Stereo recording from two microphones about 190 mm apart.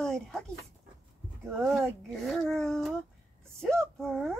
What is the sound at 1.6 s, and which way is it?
Speech, centre (ahead or behind).